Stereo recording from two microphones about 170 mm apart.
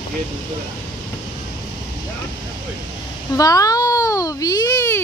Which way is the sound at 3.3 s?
20° left (ahead or behind).